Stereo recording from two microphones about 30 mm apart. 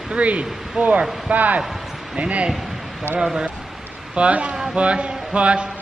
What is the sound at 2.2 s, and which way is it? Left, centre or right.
Speech, right.